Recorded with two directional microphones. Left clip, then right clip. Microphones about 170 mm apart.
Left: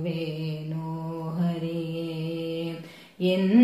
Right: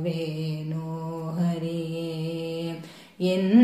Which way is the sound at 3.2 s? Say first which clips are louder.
Right 1 dB; 30° right (ahead or behind).